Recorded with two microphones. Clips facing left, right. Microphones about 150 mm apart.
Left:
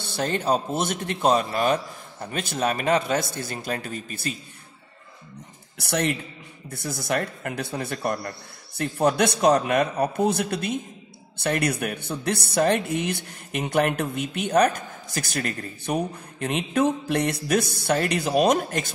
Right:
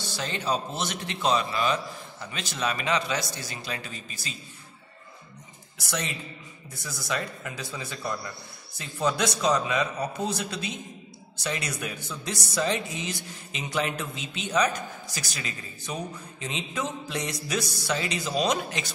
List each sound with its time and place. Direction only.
0.0 s a man's voice: 55° left (ahead or behind)
5.8 s speech: 60° left (ahead or behind)